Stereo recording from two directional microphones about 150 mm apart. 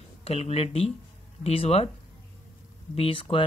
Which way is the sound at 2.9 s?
40° left (ahead or behind).